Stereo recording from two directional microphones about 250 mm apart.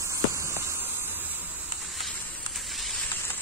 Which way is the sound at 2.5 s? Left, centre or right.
Centre.